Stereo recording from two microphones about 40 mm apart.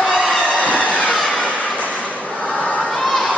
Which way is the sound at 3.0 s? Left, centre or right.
Centre.